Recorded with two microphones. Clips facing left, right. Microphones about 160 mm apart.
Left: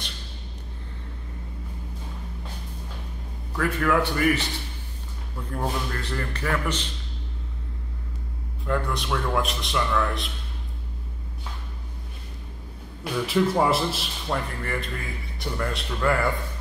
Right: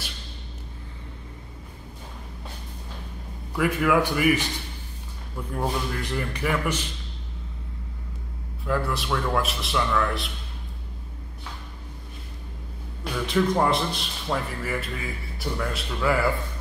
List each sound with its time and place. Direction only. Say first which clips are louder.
3.5 s a man's voice: right 2 dB; 10° right (ahead or behind)
5.6 s a man's voice: right 1 dB; 10° right (ahead or behind)
8.6 s a man's voice: right 1 dB; 5° right (ahead or behind)
13.0 s a man's voice: left 1 dB; 5° left (ahead or behind)